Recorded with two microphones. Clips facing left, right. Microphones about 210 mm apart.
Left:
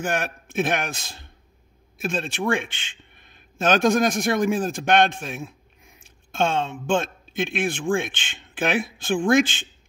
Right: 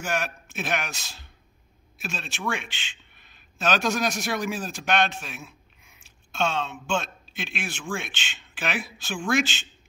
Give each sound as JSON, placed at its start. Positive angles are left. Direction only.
{"t": 0.0, "sound": "a man's voice", "side_deg": 55}
{"t": 6.4, "sound": "speech", "side_deg": 50}